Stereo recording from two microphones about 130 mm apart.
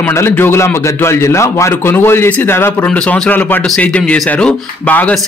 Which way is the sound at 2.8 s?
5° left (ahead or behind).